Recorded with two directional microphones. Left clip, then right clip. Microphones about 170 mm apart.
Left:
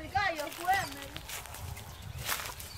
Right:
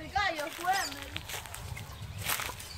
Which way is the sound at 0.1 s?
60° right (ahead or behind).